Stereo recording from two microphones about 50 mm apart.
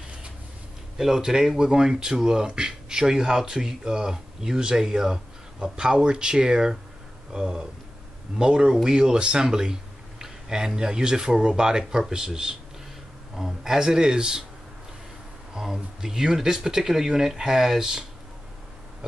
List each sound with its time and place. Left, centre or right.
0.9 s a man's voice: centre
15.5 s speech: centre